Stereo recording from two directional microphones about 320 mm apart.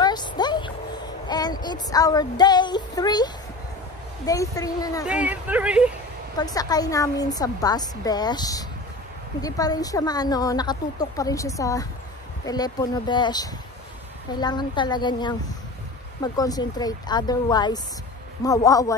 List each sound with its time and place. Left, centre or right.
0.0 s a sound: centre
1.2 s female singing: centre
4.3 s speech: centre
5.0 s speech: centre
6.3 s speech: centre